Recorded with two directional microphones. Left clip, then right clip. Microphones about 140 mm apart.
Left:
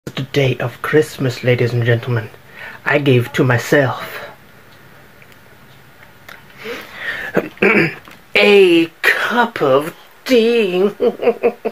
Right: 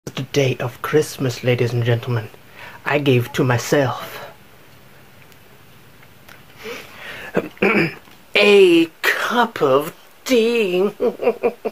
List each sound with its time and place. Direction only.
0.0 s speech: 10° right (ahead or behind)
6.6 s a sound: 5° right (ahead or behind)
7.6 s speech: 15° right (ahead or behind)